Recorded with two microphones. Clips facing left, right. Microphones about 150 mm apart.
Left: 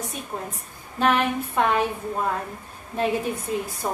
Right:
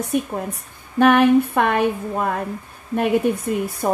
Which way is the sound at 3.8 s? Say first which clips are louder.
Right 9 dB; 65° right (ahead or behind).